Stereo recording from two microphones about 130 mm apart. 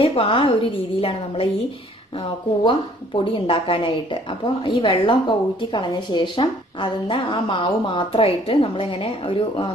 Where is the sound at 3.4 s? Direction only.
40° left (ahead or behind).